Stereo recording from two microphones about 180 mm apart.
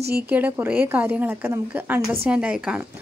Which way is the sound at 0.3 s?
10° right (ahead or behind).